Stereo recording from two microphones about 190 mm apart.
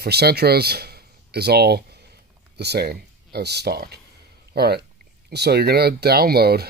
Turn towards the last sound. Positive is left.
turn(degrees=-55)  # may be behind; listen again after turning